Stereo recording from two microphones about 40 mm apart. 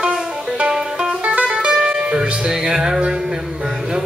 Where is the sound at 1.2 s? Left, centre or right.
Right.